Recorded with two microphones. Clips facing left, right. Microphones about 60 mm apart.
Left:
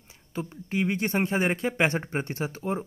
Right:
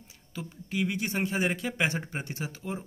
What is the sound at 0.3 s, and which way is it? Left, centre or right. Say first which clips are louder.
A man's voice: left 5 dB; left.